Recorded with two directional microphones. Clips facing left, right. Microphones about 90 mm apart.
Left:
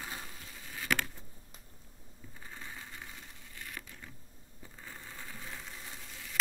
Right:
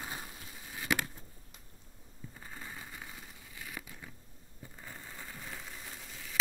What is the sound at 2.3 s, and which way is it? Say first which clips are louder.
Crushing: even; 5° right (ahead or behind).